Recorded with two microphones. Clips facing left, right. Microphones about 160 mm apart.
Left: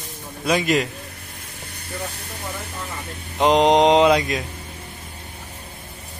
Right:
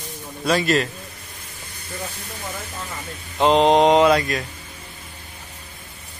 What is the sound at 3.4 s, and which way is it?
Mantra, 15° left (ahead or behind).